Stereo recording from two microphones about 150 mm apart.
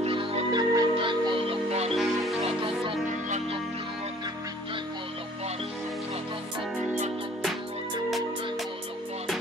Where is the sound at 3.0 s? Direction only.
55° right (ahead or behind).